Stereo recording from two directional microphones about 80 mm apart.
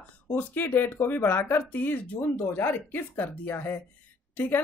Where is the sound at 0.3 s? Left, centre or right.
Left.